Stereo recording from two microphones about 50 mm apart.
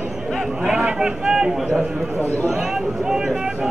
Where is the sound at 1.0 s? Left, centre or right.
Centre.